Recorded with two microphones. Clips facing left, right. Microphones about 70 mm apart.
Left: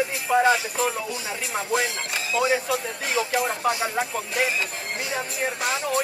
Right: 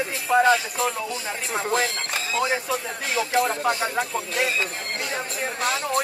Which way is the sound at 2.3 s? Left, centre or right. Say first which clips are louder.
Left 2 dB; centre.